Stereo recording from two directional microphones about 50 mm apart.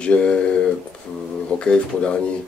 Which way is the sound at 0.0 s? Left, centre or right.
Left.